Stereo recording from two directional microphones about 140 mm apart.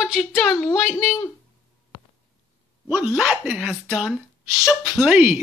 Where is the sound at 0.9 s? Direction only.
25° left (ahead or behind).